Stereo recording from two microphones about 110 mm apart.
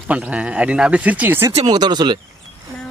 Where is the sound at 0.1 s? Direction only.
10° right (ahead or behind).